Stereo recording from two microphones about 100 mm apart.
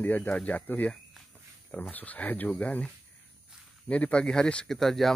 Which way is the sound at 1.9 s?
15° left (ahead or behind).